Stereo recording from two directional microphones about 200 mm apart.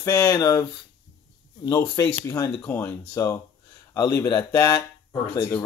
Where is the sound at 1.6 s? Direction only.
15° left (ahead or behind).